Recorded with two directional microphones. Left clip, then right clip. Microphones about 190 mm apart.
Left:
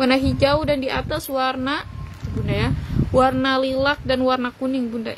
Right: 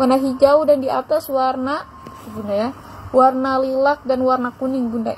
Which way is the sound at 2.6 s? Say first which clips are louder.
Left 1 dB; 75° left (ahead or behind).